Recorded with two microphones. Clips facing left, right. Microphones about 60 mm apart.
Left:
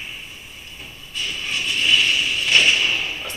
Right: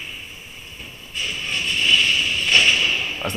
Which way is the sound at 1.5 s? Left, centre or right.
Centre.